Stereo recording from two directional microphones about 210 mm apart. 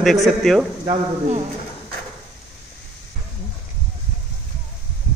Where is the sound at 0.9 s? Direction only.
30° right (ahead or behind).